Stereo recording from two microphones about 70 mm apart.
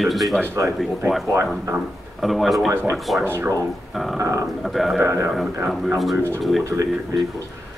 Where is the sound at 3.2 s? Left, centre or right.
Right.